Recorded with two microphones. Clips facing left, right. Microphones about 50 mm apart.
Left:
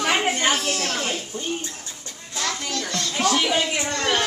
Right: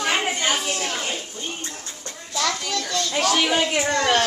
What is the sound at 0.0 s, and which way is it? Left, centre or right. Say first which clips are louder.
Children playing: left 2 dB; centre.